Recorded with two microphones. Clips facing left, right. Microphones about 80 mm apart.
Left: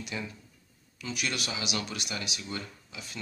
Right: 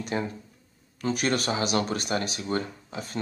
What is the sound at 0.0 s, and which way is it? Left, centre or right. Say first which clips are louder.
Speech: right 8 dB; right.